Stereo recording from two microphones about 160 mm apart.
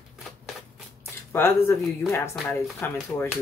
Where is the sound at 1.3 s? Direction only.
15° left (ahead or behind).